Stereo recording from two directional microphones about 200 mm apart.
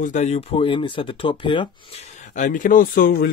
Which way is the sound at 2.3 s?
40° left (ahead or behind).